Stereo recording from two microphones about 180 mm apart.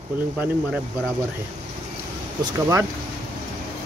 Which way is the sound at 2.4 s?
20° right (ahead or behind).